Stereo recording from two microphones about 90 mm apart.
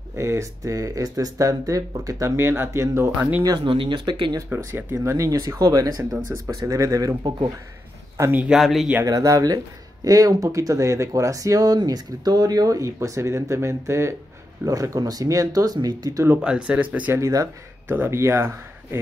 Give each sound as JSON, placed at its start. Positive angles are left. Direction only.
{"t": 0.1, "sound": "speech", "side_deg": -35}
{"t": 3.5, "sound": "speech", "side_deg": -75}
{"t": 4.5, "sound": "speech", "side_deg": -25}
{"t": 4.9, "sound": "speech", "side_deg": -35}
{"t": 6.2, "sound": "speech", "side_deg": -25}
{"t": 6.5, "sound": "speech", "side_deg": -40}
{"t": 8.4, "sound": "speech", "side_deg": -10}
{"t": 9.0, "sound": "speech", "side_deg": -40}
{"t": 16.3, "sound": "speech", "side_deg": -10}
{"t": 17.1, "sound": "speech", "side_deg": -35}
{"t": 17.8, "sound": "speech", "side_deg": -20}